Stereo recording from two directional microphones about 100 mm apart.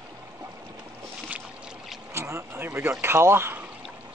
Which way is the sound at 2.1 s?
25° right (ahead or behind).